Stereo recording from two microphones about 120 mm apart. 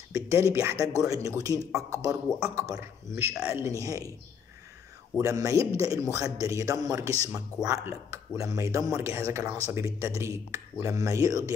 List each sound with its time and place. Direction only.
0.1 s speech: 25° right (ahead or behind)
5.2 s speech: 25° right (ahead or behind)